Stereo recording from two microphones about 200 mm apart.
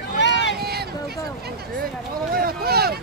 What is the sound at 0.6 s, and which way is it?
Speech, 50° right (ahead or behind).